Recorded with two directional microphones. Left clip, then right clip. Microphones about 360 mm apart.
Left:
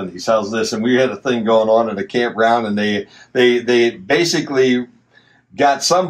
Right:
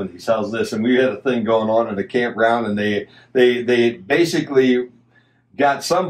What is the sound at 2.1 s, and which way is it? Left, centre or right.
Speech, left.